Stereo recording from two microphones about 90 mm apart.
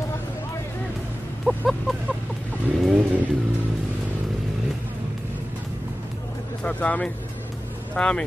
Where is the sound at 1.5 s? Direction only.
10° right (ahead or behind).